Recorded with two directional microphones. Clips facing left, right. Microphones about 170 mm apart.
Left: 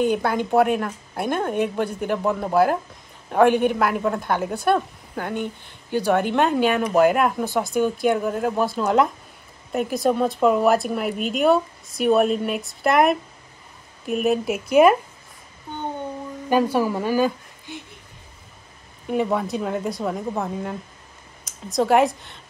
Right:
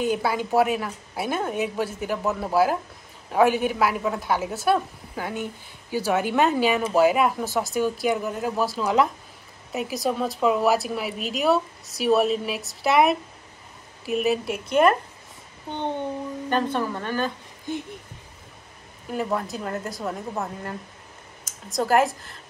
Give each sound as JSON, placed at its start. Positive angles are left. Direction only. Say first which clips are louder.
{"t": 0.0, "sound": "a woman's voice", "louder": "left 3 dB", "side_deg": -5}
{"t": 16.4, "sound": "speech", "louder": "left 6 dB", "side_deg": 10}
{"t": 17.7, "sound": "speech", "louder": "right 7 dB", "side_deg": -45}
{"t": 19.0, "sound": "a woman's voice", "louder": "left 4 dB", "side_deg": 0}